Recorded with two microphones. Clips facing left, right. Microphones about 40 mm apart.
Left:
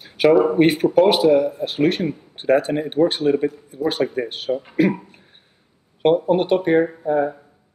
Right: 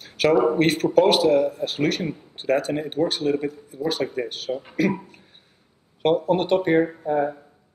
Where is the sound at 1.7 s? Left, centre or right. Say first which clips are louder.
Left 4 dB; left.